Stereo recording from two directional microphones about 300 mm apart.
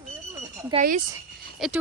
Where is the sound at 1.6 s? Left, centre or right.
Centre.